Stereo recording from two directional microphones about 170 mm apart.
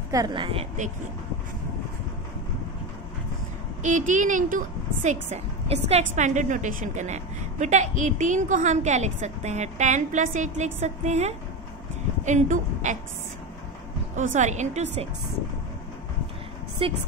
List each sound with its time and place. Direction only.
0.1 s a woman's voice: 25° right (ahead or behind)
3.8 s a woman's voice: 45° right (ahead or behind)
14.1 s a woman's voice: 45° right (ahead or behind)
16.8 s speech: 30° right (ahead or behind)